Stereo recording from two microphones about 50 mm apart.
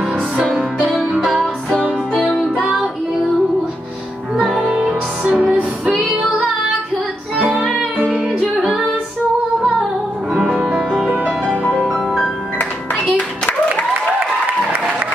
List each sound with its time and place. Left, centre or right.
0.8 s music: centre
4.4 s music: centre
4.6 s music: centre
7.5 s music: centre
8.6 s female singing: centre
10.5 s music: centre
10.8 s music: centre
11.9 s music: centre
12.9 s music: left